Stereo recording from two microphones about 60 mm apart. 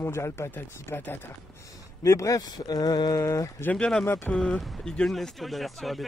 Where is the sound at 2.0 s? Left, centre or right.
Left.